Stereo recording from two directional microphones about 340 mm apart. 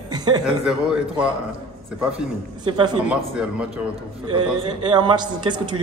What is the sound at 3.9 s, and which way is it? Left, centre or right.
A man's voice, centre.